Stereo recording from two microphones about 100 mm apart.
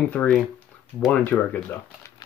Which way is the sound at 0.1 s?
10° left (ahead or behind).